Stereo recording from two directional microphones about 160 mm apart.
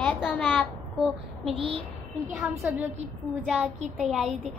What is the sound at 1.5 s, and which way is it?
Speech, 30° right (ahead or behind).